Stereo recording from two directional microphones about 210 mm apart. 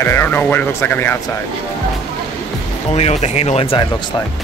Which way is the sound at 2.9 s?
30° left (ahead or behind).